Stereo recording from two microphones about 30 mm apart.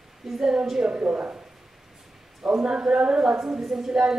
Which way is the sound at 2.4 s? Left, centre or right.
Right.